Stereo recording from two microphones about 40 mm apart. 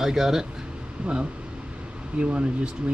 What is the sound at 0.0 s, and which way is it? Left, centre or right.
Speech, centre.